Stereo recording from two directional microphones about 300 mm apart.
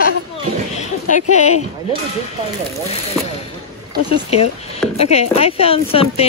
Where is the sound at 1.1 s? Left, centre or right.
Left.